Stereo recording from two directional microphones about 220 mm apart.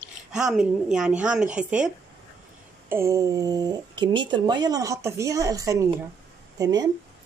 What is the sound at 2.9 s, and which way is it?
Speech, 10° right (ahead or behind).